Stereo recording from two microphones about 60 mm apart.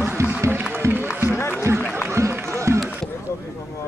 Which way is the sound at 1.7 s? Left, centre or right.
Right.